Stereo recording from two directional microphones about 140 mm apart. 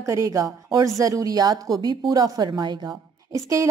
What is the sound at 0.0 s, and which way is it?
A woman's voice, 20° right (ahead or behind).